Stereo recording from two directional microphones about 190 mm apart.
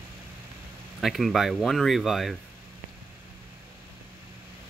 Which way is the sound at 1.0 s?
Centre (ahead or behind).